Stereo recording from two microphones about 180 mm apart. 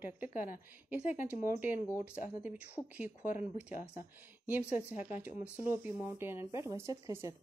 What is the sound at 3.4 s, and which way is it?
Speech, 5° right (ahead or behind).